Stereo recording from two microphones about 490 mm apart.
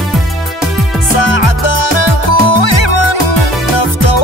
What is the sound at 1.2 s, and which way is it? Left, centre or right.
Music, left.